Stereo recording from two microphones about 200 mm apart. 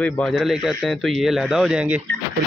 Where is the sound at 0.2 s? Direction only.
Centre (ahead or behind).